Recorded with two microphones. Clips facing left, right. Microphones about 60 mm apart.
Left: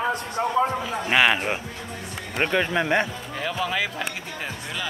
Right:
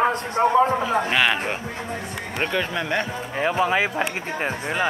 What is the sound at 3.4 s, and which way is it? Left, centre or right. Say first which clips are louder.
Speech: right 6 dB; right.